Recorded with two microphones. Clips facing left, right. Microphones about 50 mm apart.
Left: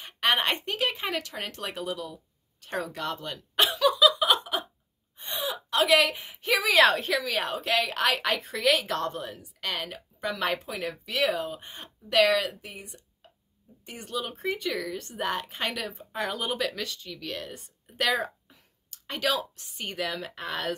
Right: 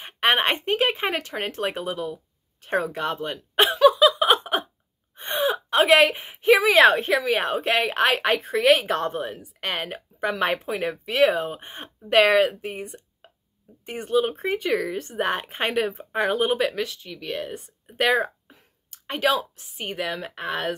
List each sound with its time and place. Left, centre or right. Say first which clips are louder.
0.0 s speech: right 4 dB; right
2.6 s a sound: right 7 dB; right
5.1 s speech: right 9 dB; right
16.8 s speech: right 4 dB; centre
18.2 s a sound: right 5 dB; right
19.5 s speech: right 4 dB; centre